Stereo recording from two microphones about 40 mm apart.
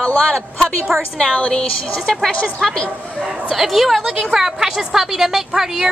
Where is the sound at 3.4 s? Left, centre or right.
Centre.